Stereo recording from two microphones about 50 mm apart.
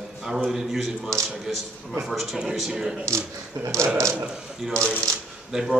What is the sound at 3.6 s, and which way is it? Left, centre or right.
Speech, right.